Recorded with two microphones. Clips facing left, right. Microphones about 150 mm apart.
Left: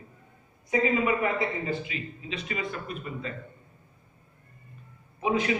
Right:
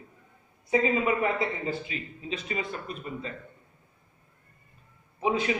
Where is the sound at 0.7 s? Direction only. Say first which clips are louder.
Even; 25° right (ahead or behind).